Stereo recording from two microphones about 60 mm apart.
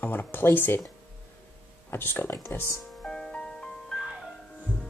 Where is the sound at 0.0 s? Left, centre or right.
Left.